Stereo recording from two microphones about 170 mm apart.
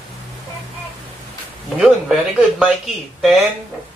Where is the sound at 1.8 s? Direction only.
5° right (ahead or behind).